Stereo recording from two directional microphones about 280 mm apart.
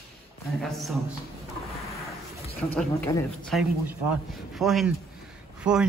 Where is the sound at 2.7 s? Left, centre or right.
Centre.